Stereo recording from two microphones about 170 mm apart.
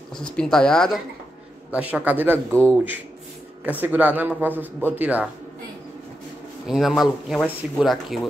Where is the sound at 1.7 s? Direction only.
10° right (ahead or behind).